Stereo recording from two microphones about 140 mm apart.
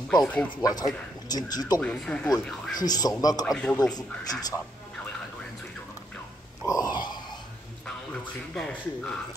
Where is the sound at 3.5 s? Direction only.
5° left (ahead or behind).